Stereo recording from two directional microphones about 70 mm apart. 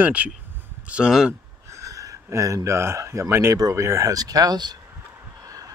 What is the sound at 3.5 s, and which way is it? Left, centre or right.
Speech, right.